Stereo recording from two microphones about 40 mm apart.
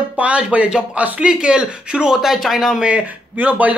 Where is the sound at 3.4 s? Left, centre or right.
Right.